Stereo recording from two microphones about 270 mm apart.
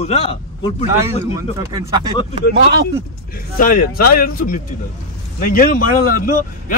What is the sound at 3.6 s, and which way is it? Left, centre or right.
Speech, left.